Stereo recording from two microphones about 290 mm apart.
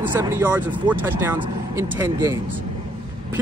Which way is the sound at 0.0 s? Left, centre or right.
Centre.